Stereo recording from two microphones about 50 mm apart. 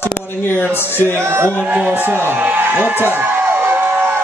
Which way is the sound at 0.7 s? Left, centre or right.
Left.